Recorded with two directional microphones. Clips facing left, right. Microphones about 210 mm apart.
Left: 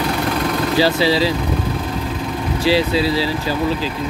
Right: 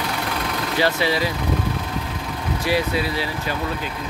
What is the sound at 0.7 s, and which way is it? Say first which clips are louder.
Speech: left 4 dB; 30° left (ahead or behind).